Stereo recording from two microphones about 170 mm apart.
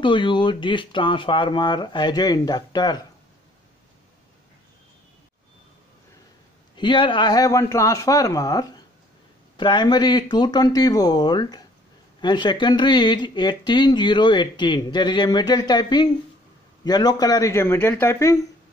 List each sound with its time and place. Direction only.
0.0 s speech: 30° left (ahead or behind)
6.8 s speech: 30° left (ahead or behind)